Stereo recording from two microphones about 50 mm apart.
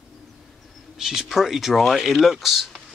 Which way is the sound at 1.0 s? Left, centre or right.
Centre.